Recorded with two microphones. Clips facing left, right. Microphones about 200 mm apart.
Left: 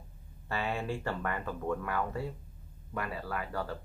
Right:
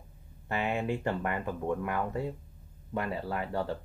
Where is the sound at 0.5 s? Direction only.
20° right (ahead or behind).